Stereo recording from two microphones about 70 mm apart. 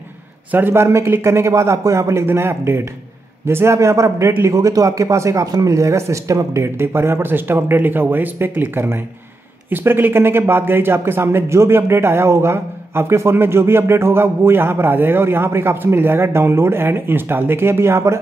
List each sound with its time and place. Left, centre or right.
0.5 s speech: right
2.2 s a man's voice: right